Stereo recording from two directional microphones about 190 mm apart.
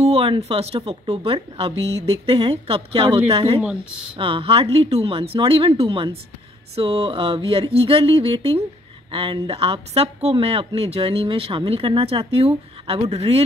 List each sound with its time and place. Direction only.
0.0 s speech: 30° right (ahead or behind)
3.6 s speech: 5° right (ahead or behind)
4.2 s speech: 30° right (ahead or behind)